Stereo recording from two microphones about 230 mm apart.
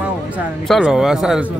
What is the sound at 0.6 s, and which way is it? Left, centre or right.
Speech, centre.